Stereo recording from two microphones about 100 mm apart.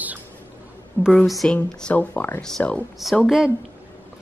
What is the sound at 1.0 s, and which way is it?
Speech, centre (ahead or behind).